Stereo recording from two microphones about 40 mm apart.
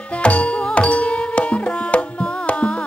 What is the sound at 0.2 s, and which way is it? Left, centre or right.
Music, left.